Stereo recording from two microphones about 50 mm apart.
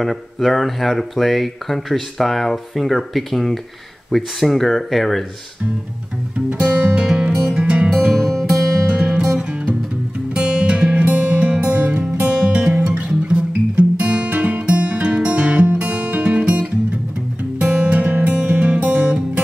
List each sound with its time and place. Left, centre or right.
0.0 s speech: centre
6.6 s music: right
7.2 s music: right
10.3 s music: centre
12.9 s guitar: right
17.6 s music: right